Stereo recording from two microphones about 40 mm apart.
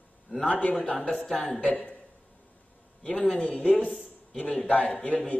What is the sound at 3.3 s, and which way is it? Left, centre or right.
A man's voice, left.